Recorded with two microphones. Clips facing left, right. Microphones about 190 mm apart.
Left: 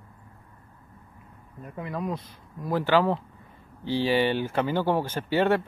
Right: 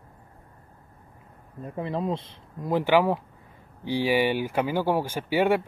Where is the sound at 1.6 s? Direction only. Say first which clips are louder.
Right 3 dB; 30° right (ahead or behind).